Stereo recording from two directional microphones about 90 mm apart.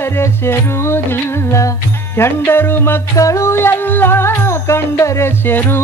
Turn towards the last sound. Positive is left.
turn(degrees=25)  # may be behind; listen again after turning